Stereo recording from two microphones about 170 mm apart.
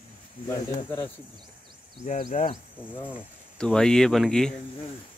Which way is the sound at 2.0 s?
45° left (ahead or behind).